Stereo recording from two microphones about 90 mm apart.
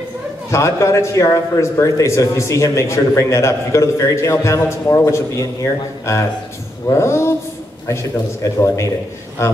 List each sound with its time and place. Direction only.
0.5 s a man's voice: 35° left (ahead or behind)
8.5 s a man's voice: 35° left (ahead or behind)